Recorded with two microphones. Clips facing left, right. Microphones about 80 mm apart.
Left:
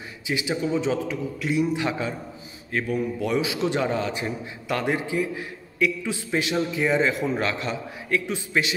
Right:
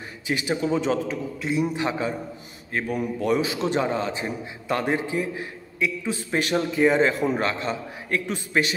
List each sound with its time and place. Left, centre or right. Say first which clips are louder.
0.3 s a man's voice: right 1 dB; right
1.4 s a man's voice: left 1 dB; right
2.9 s a man's voice: right 2 dB; right